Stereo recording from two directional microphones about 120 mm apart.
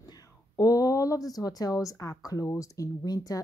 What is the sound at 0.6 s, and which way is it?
A woman's voice, 30° left (ahead or behind).